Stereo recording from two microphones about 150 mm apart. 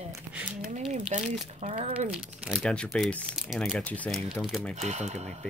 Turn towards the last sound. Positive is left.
turn(degrees=-50)  # may be behind; listen again after turning